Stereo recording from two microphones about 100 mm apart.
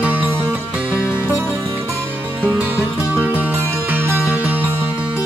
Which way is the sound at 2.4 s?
15° right (ahead or behind).